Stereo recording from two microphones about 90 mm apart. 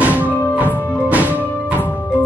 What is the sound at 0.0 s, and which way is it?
Music, 15° right (ahead or behind).